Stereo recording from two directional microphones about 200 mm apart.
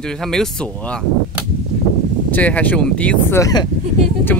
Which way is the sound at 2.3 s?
10° left (ahead or behind).